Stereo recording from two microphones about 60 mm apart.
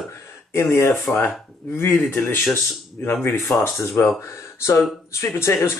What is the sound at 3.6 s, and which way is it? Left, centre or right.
Speech, left.